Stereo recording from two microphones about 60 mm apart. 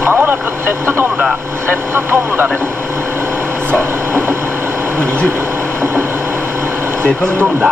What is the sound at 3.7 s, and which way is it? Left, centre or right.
Speech, right.